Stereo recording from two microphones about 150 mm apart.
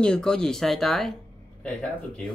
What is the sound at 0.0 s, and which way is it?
Speech, 5° left (ahead or behind).